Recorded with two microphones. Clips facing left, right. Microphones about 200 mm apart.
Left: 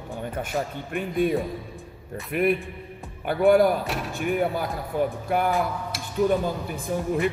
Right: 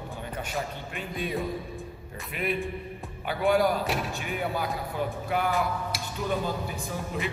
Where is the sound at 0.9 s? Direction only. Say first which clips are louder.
Left 11 dB; 55° left (ahead or behind).